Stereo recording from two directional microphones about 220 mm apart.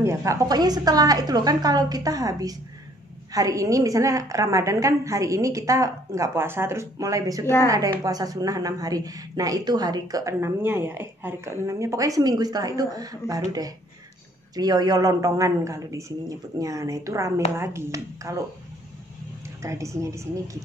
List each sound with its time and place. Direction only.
0.0 s a woman's voice: 15° right (ahead or behind)
19.6 s a woman's voice: 15° right (ahead or behind)